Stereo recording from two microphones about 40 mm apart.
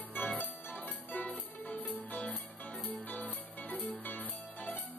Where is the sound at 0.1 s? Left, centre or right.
Left.